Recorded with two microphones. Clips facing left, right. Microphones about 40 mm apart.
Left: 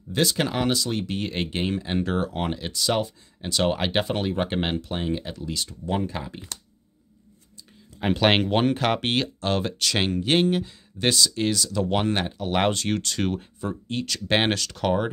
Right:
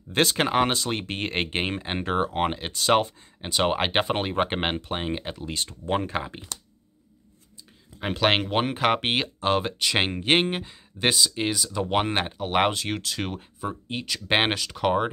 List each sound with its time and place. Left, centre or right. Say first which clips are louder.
0.1 s speech: right 2 dB; right
3.3 s speech: even; right
8.0 s speech: left 2 dB; centre
10.1 s speech: left 1 dB; right; by 15.0 s centre